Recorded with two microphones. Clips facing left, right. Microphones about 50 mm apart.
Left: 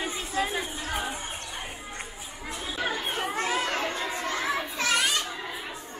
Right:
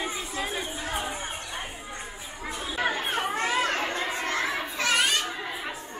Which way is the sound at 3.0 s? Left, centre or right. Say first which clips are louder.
Right 2 dB; centre.